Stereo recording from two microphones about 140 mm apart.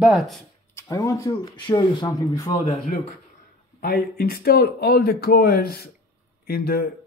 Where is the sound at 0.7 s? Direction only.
25° left (ahead or behind).